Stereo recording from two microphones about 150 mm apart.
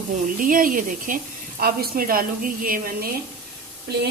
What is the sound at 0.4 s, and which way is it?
Speech, 65° right (ahead or behind).